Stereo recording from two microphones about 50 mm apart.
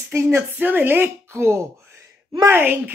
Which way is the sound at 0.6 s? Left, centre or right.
Right.